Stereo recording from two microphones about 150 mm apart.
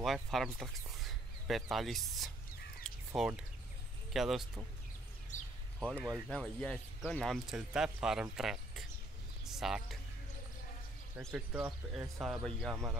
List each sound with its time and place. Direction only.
0.0 s speech: centre (ahead or behind)
2.8 s crow: 5° left (ahead or behind)
3.2 s speech: 5° right (ahead or behind)
5.3 s a sound: 55° left (ahead or behind)
5.8 s speech: 10° right (ahead or behind)
6.0 s speech: centre (ahead or behind)
11.1 s speech: 15° right (ahead or behind)
12.2 s speech: centre (ahead or behind)